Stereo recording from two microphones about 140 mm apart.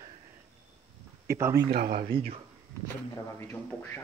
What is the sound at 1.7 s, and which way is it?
Speech, 90° right.